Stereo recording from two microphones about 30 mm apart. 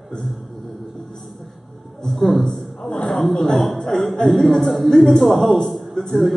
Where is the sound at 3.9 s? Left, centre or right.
Left.